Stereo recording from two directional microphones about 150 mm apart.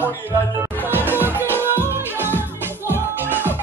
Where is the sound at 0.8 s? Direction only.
15° right (ahead or behind).